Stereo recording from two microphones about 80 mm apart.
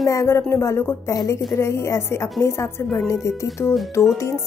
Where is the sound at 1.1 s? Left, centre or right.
Left.